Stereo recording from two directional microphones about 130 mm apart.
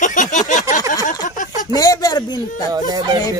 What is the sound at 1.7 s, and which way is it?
Speech, 30° left (ahead or behind).